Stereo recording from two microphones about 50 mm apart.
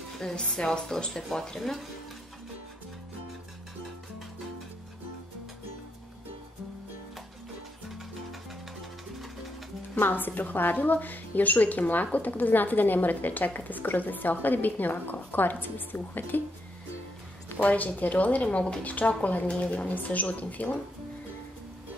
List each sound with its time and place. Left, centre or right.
0.2 s speech: centre
9.9 s a woman's voice: left
17.6 s a woman's voice: left